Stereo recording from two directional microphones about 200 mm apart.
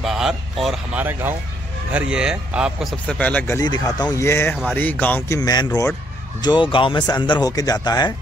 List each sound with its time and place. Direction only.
0.0 s a man's voice: centre (ahead or behind); by 5.7 s 20° left (ahead or behind)
5.7 s a man's voice: 5° left (ahead or behind)
6.4 s speech: 25° left (ahead or behind)